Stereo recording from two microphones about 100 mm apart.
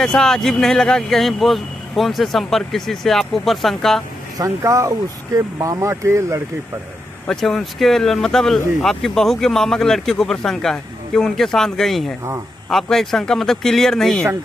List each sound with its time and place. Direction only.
0.0 s speech: 5° left (ahead or behind)
4.4 s speech: 30° right (ahead or behind)
7.2 s speech: centre (ahead or behind)